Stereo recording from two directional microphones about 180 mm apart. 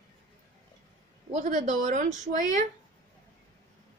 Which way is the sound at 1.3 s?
40° right (ahead or behind).